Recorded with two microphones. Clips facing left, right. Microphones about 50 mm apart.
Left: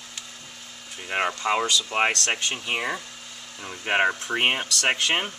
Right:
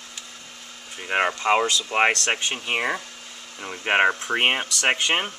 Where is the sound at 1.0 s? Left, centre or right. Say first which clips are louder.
Right 3 dB; centre.